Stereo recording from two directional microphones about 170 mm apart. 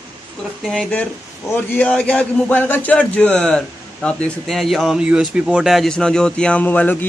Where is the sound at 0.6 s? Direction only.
5° left (ahead or behind).